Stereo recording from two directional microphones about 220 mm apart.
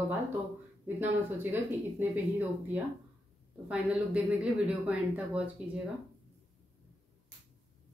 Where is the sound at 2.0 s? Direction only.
10° right (ahead or behind).